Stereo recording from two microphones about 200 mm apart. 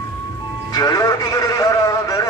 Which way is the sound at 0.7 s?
20° left (ahead or behind).